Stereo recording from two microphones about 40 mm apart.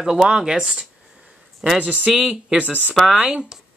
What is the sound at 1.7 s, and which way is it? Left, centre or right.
Speech, right.